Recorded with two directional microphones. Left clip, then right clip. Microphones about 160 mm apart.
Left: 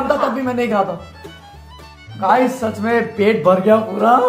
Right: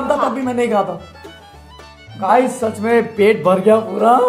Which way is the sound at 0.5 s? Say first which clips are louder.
Right 1 dB; 20° right (ahead or behind).